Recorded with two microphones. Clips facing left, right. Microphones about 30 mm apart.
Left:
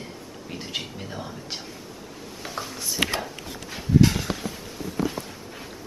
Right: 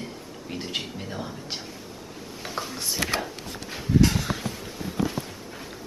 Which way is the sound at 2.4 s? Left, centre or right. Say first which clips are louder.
Right 1 dB; centre.